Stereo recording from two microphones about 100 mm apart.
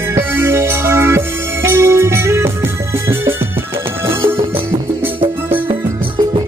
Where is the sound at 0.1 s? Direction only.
25° right (ahead or behind).